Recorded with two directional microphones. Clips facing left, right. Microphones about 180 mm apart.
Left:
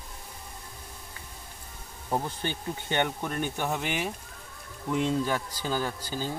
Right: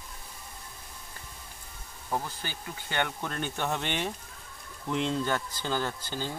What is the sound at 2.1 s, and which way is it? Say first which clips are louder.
Speech: left 4 dB; 20° left (ahead or behind).